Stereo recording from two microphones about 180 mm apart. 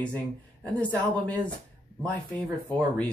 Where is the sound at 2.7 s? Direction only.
5° left (ahead or behind).